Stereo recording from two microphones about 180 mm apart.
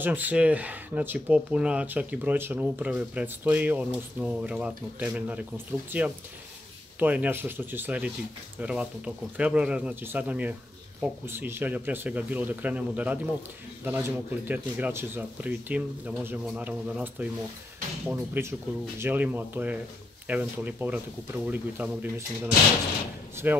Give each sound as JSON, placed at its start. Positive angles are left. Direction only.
{"t": 0.0, "sound": "speech", "side_deg": -10}
{"t": 23.3, "sound": "speech", "side_deg": -10}